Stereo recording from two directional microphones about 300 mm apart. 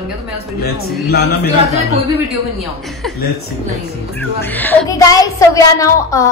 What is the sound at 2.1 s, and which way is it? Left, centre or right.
A woman's voice, centre.